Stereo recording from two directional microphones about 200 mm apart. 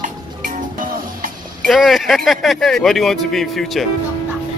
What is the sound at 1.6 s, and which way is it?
Speech, centre (ahead or behind).